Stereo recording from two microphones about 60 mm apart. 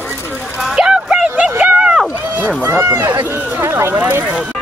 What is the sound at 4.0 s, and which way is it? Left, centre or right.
Speech, right.